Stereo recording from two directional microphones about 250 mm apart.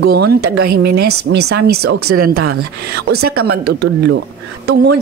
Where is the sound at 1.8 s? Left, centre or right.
Right.